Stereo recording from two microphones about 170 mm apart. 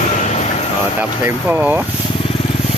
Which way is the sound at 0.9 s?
10° right (ahead or behind).